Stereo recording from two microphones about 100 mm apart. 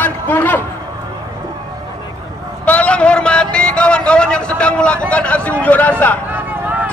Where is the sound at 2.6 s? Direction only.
15° left (ahead or behind).